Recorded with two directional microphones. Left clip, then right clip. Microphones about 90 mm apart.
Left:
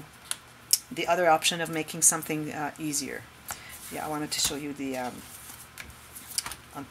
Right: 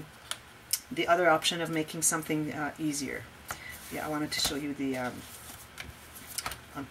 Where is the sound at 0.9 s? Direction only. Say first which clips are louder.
Left 1 dB; 30° left (ahead or behind).